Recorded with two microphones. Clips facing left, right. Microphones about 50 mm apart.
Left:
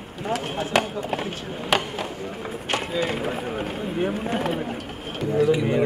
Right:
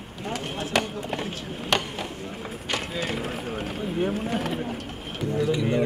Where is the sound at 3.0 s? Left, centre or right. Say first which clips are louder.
Left 4 dB; centre.